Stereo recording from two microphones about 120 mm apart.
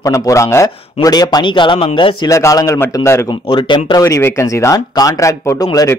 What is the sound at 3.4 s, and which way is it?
Speech, 40° left (ahead or behind).